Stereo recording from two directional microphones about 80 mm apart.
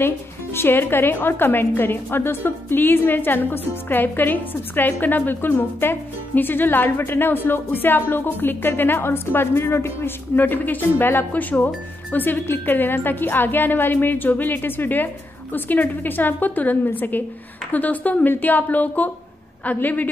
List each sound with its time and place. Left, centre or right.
0.0 s a woman's voice: left